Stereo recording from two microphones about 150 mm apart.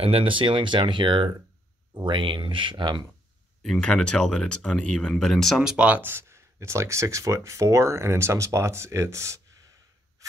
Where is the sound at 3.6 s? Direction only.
5° left (ahead or behind).